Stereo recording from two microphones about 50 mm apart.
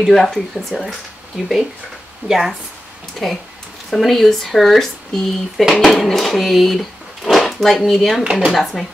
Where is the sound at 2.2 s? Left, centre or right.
Centre.